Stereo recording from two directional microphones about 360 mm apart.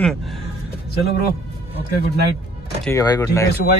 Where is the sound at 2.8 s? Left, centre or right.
Centre.